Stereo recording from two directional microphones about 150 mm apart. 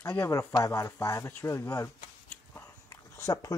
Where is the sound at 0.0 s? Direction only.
20° left (ahead or behind).